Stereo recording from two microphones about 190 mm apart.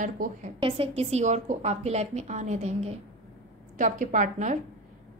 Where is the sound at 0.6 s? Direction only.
30° right (ahead or behind).